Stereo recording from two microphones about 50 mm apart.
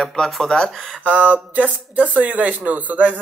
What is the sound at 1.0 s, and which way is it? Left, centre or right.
Speech, right.